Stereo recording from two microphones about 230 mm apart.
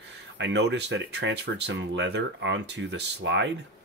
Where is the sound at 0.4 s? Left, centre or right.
Right.